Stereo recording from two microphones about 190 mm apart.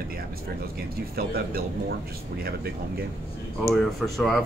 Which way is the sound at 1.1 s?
55° right (ahead or behind).